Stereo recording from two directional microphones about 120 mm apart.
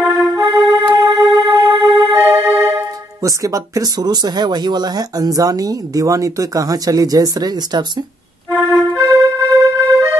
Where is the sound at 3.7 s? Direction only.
35° right (ahead or behind).